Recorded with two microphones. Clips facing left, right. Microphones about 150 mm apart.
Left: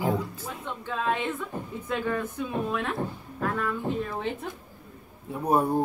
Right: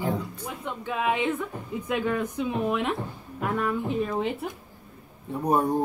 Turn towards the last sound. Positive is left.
turn(degrees=5)  # may be behind; listen again after turning